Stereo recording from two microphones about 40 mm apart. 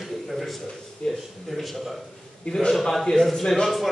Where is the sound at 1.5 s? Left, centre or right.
Centre.